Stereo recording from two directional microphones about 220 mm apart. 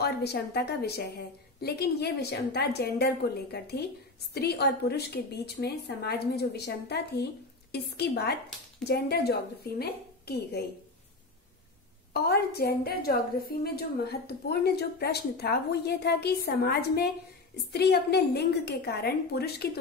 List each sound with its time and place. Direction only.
0.0 s a woman's voice: 50° left (ahead or behind)
12.1 s a woman's voice: 45° left (ahead or behind)